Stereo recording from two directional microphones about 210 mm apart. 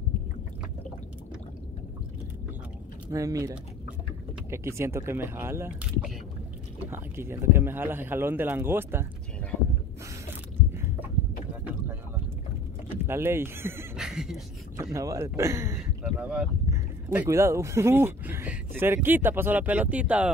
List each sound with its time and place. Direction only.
3.1 s a man's voice: 15° right (ahead or behind)
10.7 s a sound: 10° right (ahead or behind)
12.9 s speech: 10° right (ahead or behind)
14.8 s a man's voice: 15° right (ahead or behind)